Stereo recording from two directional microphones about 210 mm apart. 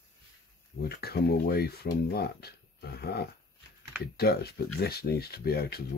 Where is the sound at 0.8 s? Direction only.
50° left (ahead or behind).